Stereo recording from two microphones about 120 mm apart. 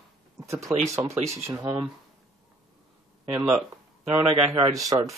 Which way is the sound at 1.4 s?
20° right (ahead or behind).